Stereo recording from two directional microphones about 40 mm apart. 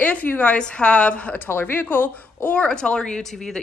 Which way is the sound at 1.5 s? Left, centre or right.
Left.